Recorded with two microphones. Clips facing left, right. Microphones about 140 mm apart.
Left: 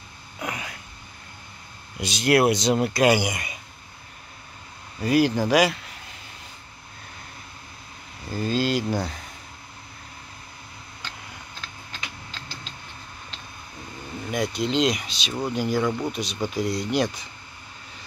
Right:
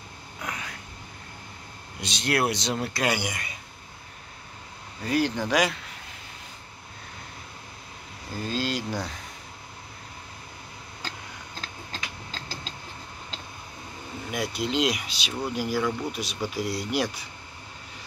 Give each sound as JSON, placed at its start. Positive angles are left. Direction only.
{"t": 0.4, "sound": "a sound", "side_deg": 10}
{"t": 2.0, "sound": "speech", "side_deg": 10}
{"t": 5.0, "sound": "speech", "side_deg": 10}
{"t": 8.3, "sound": "speech", "side_deg": 0}
{"t": 11.0, "sound": "a sound", "side_deg": -35}
{"t": 14.3, "sound": "speech", "side_deg": -5}